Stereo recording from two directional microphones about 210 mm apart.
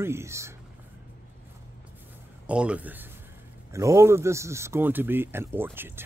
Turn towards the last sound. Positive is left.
turn(degrees=-10)  # may be behind; listen again after turning